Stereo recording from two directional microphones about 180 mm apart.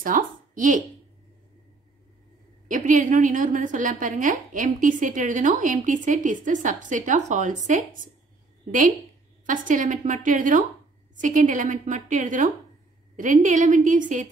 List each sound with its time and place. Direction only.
0.0 s speech: 45° right (ahead or behind)
2.7 s a woman's voice: 45° right (ahead or behind)
9.5 s a woman's voice: 45° right (ahead or behind)